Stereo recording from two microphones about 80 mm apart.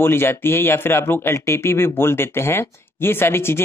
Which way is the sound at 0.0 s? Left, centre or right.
Left.